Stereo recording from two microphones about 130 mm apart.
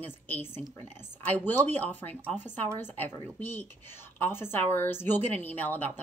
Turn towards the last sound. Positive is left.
turn(degrees=15)  # may be behind; listen again after turning